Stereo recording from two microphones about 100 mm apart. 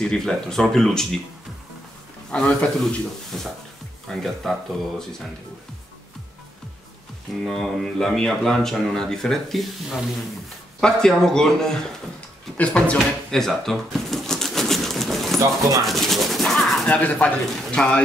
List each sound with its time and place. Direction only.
0.0 s speech: 5° left (ahead or behind)
2.3 s speech: 10° left (ahead or behind)
7.4 s speech: 5° left (ahead or behind)
12.5 s a sound: 10° left (ahead or behind)
16.8 s speech: 15° left (ahead or behind)